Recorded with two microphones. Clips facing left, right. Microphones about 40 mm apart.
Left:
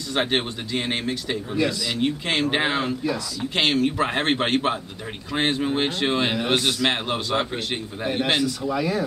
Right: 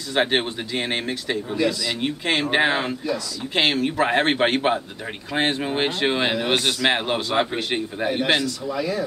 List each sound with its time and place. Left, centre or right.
0.1 s a man's voice: centre
8.7 s speech: centre